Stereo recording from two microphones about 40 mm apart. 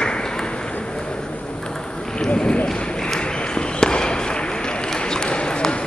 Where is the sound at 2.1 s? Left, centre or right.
Left.